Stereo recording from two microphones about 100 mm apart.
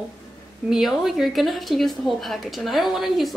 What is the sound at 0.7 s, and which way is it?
Speech, centre (ahead or behind).